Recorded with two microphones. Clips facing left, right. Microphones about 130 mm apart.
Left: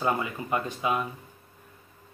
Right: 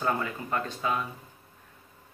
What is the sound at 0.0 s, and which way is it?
Speech, 15° left (ahead or behind).